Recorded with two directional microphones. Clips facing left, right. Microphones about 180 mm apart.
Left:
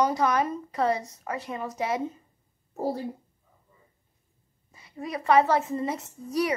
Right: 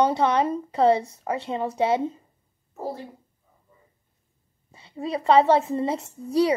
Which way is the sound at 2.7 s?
35° left (ahead or behind).